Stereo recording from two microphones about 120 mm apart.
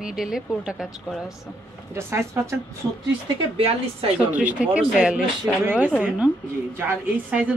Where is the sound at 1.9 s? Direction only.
20° right (ahead or behind).